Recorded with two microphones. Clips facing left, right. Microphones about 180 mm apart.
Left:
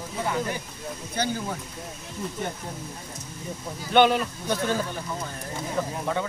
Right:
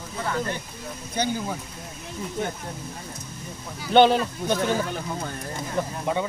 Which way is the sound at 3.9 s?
30° right (ahead or behind).